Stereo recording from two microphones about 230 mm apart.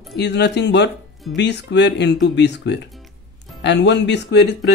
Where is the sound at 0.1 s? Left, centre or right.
Left.